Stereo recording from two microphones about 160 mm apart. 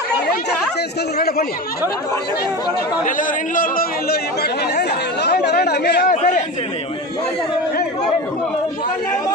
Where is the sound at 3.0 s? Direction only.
55° left (ahead or behind); by 6.1 s 90° left.